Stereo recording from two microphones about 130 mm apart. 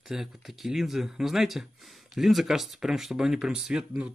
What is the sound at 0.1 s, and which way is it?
Speech, centre (ahead or behind).